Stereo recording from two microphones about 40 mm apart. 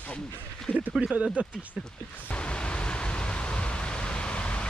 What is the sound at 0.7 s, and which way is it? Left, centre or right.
Speech, right.